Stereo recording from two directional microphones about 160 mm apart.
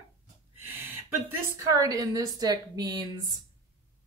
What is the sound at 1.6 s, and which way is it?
Speech, 20° right (ahead or behind).